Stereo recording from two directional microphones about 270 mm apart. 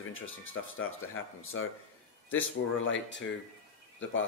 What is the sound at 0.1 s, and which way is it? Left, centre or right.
Speech, left.